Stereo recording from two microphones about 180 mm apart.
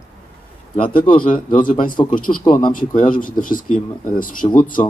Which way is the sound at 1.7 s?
50° left (ahead or behind).